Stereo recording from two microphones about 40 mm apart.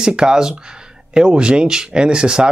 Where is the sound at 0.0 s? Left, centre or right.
Centre.